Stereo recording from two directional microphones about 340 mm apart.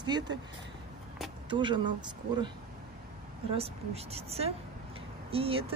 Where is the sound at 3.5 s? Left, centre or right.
Centre.